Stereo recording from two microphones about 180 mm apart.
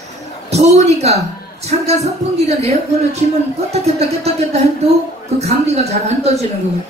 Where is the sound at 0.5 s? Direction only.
35° right (ahead or behind).